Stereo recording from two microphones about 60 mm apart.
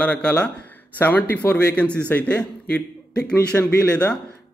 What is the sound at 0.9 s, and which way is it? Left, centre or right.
A man's voice, left.